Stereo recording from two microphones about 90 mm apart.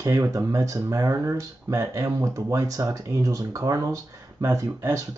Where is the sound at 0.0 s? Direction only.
40° right (ahead or behind).